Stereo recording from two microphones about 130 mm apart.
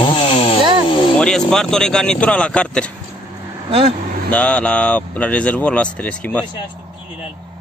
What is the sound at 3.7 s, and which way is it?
Speech, 45° right (ahead or behind).